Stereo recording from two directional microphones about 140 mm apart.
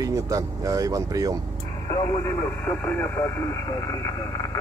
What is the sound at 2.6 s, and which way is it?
Speech, 15° left (ahead or behind).